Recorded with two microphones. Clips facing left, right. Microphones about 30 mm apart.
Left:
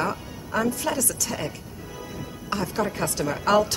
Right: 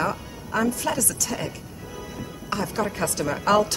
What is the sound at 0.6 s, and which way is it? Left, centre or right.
Speech, centre.